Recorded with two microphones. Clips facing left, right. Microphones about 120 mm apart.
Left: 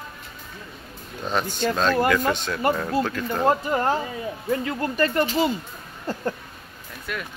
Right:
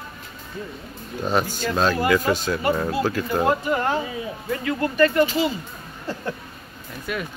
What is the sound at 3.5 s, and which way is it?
Speech, 35° left (ahead or behind).